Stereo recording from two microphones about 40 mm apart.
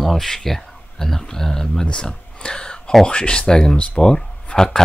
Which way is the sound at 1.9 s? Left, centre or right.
Left.